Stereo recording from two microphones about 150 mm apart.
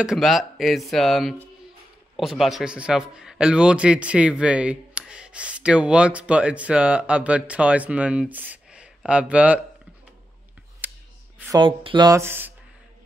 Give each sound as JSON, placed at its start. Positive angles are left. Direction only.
{"t": 0.0, "sound": "a man's voice", "side_deg": 0}
{"t": 10.8, "sound": "a sound", "side_deg": -10}
{"t": 11.5, "sound": "speech", "side_deg": -35}
{"t": 12.1, "sound": "a man's voice", "side_deg": -15}